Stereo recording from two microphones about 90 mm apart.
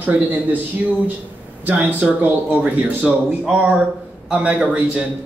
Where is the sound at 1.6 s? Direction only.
20° right (ahead or behind).